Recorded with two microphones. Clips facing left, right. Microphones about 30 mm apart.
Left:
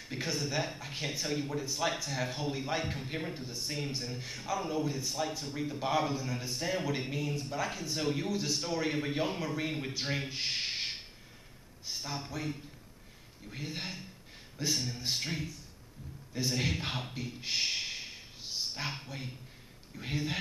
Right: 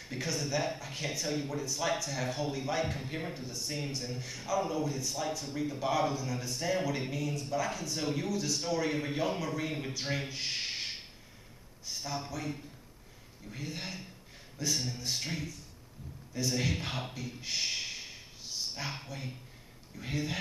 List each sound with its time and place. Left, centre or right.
0.1 s a man's voice: centre
11.9 s a man's voice: left
16.3 s a man's voice: left
17.6 s a sound: centre
20.0 s a man's voice: centre